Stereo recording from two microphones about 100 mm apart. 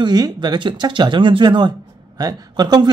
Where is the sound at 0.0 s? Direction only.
45° right (ahead or behind).